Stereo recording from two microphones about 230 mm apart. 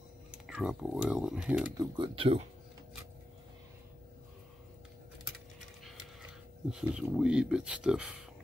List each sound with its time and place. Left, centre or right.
0.3 s speech: centre
1.8 s speech: right
6.7 s speech: centre